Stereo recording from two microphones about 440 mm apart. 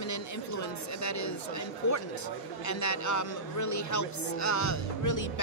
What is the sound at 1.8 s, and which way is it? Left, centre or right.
Speech, left.